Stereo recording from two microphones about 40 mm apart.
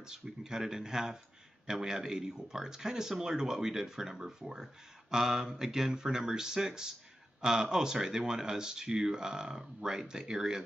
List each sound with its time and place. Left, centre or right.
0.0 s speech: centre